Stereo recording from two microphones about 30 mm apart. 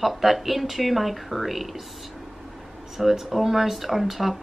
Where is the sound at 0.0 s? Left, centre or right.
Centre.